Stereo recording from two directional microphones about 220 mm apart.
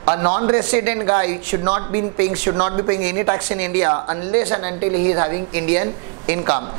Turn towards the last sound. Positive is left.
turn(degrees=-20)  # may be behind; listen again after turning